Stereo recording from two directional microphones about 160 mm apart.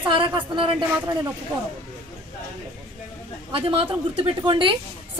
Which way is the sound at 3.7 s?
35° right (ahead or behind).